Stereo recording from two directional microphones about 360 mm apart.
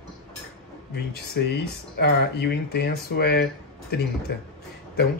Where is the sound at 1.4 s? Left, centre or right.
Left.